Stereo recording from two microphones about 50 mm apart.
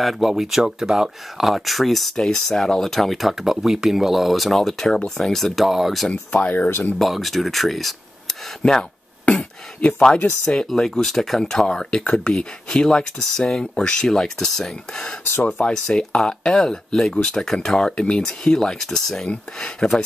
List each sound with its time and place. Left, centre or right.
0.0 s speech: centre
2.1 s speech: centre
6.0 s speech: left
6.7 s speech: left
7.0 s speech: centre
8.6 s speech: left
9.2 s a sound: left
10.4 s speech: centre
10.7 s speech: centre